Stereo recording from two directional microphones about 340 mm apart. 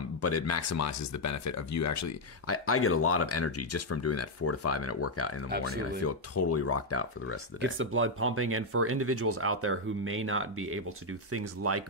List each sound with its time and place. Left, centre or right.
0.2 s speech: left
7.6 s speech: right